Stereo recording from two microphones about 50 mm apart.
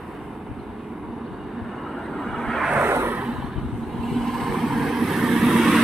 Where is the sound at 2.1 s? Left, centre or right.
Centre.